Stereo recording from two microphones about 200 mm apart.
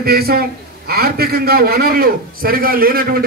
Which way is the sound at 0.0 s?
50° right (ahead or behind).